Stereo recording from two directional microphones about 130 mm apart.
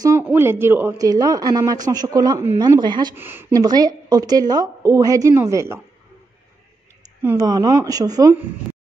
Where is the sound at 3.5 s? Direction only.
30° right (ahead or behind).